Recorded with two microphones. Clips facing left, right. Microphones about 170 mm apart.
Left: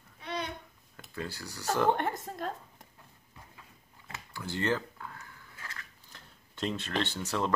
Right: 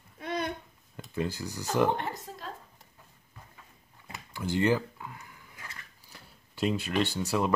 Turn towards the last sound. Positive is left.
turn(degrees=-10)  # may be behind; listen again after turning